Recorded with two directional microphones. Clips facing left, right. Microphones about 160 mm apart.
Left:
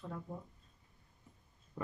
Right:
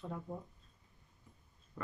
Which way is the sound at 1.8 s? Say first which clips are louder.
Left 2 dB; 20° left (ahead or behind).